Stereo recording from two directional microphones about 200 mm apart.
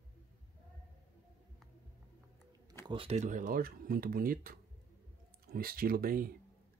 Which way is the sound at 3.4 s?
45° right (ahead or behind).